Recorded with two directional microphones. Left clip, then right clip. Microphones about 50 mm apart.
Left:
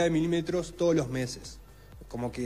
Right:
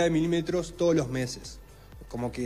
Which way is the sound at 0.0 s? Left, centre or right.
Left.